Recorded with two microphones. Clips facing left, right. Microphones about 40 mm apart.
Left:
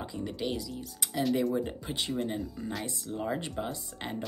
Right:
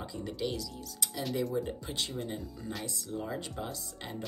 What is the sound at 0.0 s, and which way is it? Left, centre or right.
Speech, centre.